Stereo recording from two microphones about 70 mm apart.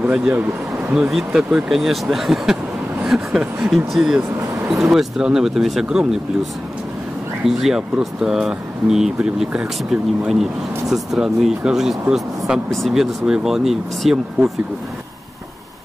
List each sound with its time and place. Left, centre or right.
0.0 s speech: centre
1.1 s speech: centre
7.4 s speech: centre